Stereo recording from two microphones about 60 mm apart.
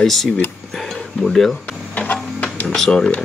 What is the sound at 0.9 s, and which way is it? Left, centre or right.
Speech, centre.